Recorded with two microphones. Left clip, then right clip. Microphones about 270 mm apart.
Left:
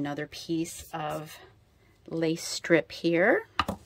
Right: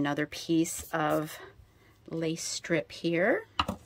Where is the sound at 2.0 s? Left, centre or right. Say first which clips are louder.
Left 4 dB; centre.